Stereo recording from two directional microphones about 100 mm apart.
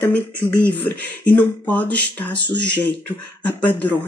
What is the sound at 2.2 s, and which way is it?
Speech, 50° left (ahead or behind).